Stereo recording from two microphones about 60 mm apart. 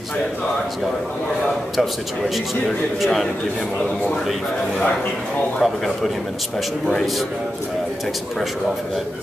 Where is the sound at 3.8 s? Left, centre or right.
Left.